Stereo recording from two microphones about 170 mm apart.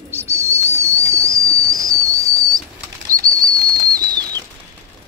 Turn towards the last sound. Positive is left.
turn(degrees=-25)  # may be behind; listen again after turning